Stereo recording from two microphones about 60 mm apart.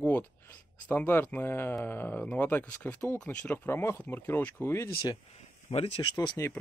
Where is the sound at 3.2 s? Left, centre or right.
Left.